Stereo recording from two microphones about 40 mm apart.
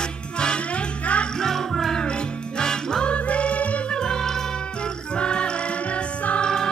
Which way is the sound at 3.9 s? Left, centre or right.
Centre.